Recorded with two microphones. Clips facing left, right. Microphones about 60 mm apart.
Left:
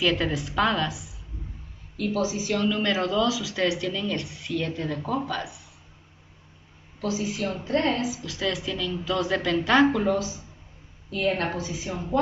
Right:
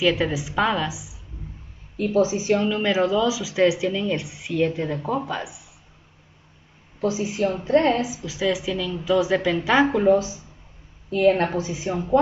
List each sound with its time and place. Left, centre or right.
0.0 s speech: centre
2.0 s a woman's voice: right
2.7 s speech: centre
7.0 s a woman's voice: right
8.1 s speech: centre
10.0 s a woman's voice: right